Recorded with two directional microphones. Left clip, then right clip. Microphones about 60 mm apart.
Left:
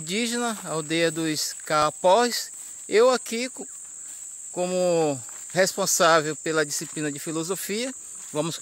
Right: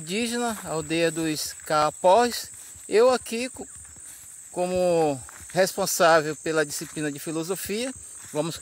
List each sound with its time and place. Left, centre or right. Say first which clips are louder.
0.0 s speech: left 1 dB; right